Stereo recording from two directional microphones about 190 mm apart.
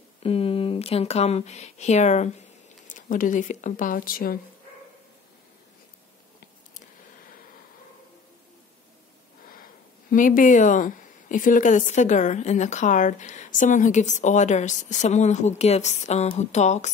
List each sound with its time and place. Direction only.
0.2 s speech: 30° left (ahead or behind); by 4.4 s 50° left (ahead or behind)
10.1 s speech: 45° left (ahead or behind)